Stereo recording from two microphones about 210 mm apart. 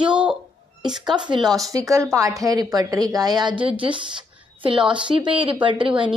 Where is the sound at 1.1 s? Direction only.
20° right (ahead or behind).